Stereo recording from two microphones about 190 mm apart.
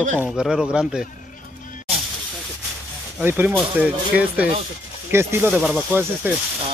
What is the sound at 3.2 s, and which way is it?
Speech, 10° right (ahead or behind).